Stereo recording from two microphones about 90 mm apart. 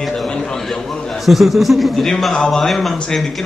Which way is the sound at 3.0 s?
5° left (ahead or behind).